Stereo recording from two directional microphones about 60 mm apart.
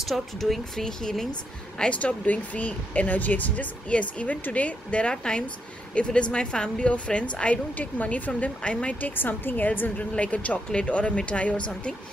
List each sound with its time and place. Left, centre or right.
0.0 s speech: centre
1.8 s a woman's voice: centre
9.1 s a woman's voice: left
9.9 s speech: left